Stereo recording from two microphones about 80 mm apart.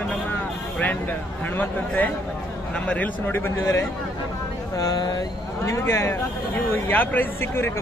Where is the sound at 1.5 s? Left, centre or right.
Left.